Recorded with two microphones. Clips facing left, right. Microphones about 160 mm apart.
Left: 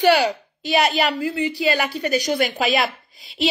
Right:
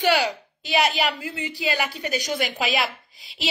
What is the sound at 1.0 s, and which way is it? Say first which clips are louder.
Speech: left 6 dB; 15° right (ahead or behind).